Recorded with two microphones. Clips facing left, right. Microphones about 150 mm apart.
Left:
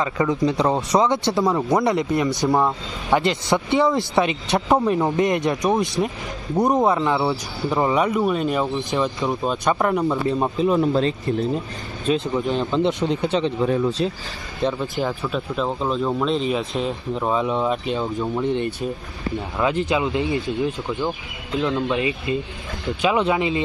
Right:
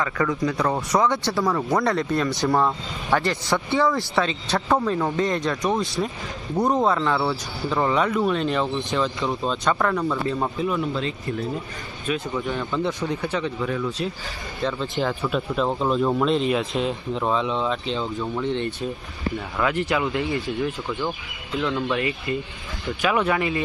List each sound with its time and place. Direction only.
0.0 s speech: 20° left (ahead or behind)
10.7 s speech: 35° left (ahead or behind)
12.4 s speech: 20° left (ahead or behind)
14.6 s speech: 15° left (ahead or behind)
15.0 s speech: centre (ahead or behind)
19.6 s speech: 25° left (ahead or behind)